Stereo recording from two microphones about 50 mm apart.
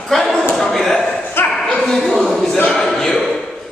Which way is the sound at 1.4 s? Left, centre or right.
Left.